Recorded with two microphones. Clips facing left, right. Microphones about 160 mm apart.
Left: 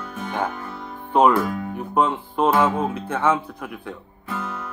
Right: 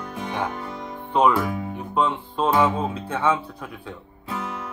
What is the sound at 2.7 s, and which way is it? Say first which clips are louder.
Speech: left 2 dB; 15° right (ahead or behind).